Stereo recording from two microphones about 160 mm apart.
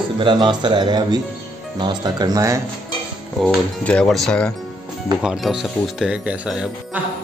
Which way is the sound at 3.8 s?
5° left (ahead or behind).